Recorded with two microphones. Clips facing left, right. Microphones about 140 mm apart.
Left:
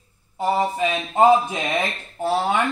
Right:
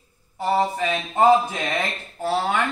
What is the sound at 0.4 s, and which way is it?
Speech, 15° left (ahead or behind).